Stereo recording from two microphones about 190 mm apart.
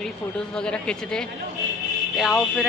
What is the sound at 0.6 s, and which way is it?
Speech, 5° left (ahead or behind).